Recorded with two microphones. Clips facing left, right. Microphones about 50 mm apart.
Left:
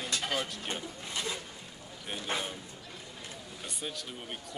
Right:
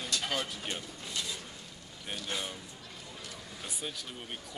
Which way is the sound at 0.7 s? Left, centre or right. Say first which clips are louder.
Left 2 dB; left.